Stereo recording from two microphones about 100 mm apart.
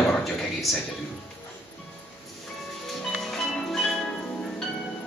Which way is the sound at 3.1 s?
Centre (ahead or behind).